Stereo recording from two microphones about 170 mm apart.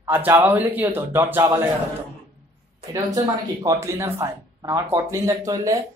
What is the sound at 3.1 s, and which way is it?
Speech, 20° right (ahead or behind).